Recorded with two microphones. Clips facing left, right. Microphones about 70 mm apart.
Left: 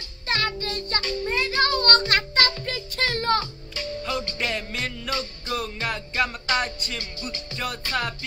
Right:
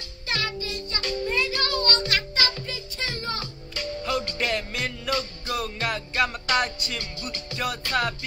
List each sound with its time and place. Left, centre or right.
0.3 s music: left
1.2 s music: left
2.6 s music: left
4.0 s music: centre